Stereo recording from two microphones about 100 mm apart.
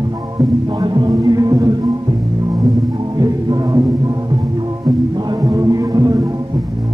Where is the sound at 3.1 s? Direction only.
40° right (ahead or behind).